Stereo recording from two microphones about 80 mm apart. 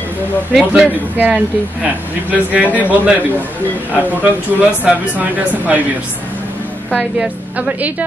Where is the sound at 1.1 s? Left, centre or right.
Right.